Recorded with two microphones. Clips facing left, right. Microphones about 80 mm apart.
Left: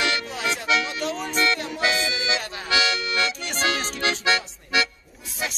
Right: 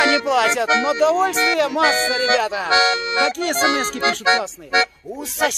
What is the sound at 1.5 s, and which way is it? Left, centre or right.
Music, right.